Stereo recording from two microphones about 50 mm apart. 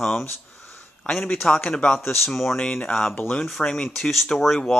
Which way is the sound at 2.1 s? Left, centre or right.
Centre.